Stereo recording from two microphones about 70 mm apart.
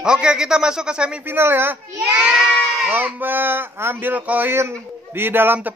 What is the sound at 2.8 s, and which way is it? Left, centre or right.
Speech, right.